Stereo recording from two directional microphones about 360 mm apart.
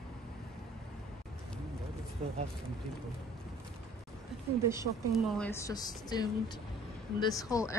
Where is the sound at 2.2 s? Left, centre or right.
Centre.